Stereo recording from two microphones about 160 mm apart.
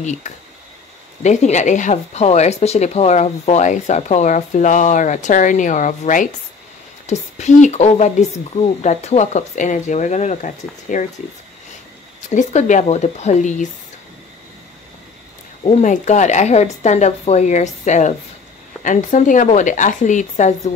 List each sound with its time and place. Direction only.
0.0 s speech: 45° left (ahead or behind)
12.4 s speech: 50° left (ahead or behind)
15.6 s speech: 45° left (ahead or behind)